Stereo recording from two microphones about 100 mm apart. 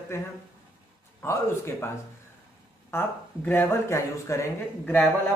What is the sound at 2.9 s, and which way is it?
Speech, 25° left (ahead or behind).